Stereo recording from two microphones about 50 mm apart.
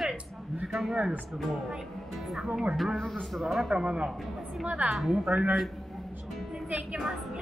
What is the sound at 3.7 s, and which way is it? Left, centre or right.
Speech, centre.